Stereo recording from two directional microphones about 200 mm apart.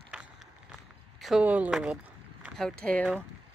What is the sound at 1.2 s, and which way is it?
Speech, 5° right (ahead or behind).